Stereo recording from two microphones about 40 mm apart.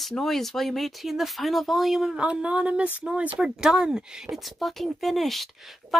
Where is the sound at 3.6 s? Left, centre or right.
Centre.